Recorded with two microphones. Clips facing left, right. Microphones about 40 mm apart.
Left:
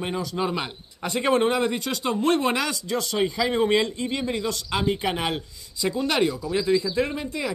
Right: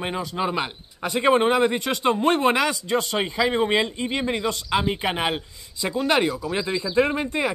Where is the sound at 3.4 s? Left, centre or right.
Centre.